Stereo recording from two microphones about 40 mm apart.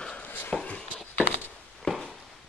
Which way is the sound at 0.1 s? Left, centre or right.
Left.